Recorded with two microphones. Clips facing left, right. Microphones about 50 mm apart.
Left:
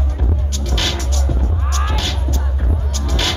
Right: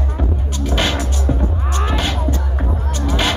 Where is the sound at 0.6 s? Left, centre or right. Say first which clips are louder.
Right 4 dB; centre.